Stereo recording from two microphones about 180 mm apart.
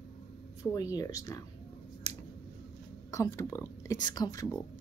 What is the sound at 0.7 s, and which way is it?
Speech, 20° left (ahead or behind).